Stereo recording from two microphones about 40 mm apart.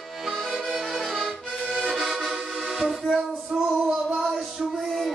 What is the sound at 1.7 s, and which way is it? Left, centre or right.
Accordion, left.